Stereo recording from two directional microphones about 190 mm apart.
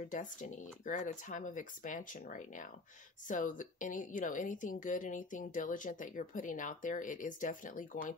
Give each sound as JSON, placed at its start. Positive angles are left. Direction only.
{"t": 0.1, "sound": "a woman's voice", "side_deg": 40}